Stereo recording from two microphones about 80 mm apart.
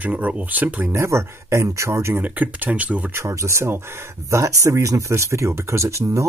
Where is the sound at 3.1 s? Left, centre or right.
Right.